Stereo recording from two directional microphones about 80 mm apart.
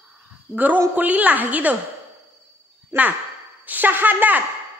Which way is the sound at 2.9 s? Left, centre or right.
Right.